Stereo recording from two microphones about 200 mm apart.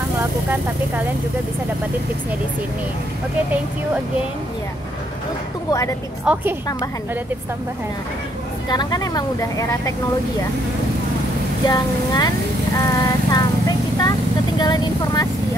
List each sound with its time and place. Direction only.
5.7 s a woman's voice: 15° left (ahead or behind)
6.3 s a woman's voice: 5° right (ahead or behind)
8.6 s speech: 20° left (ahead or behind)
11.6 s speech: 20° left (ahead or behind)
12.8 s vehicle: 20° left (ahead or behind)
14.6 s speech: 20° left (ahead or behind)